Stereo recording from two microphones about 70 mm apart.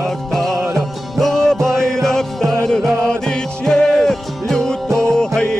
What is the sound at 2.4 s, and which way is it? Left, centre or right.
Music, right.